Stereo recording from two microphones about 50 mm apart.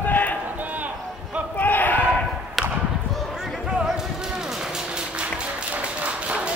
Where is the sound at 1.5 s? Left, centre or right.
Left.